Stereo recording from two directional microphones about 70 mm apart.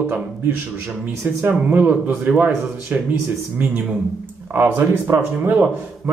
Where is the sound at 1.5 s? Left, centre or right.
Right.